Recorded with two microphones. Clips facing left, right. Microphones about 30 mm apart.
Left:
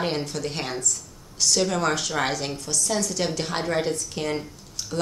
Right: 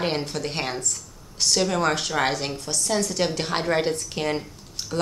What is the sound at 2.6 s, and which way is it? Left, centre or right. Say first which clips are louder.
Speech: even; right.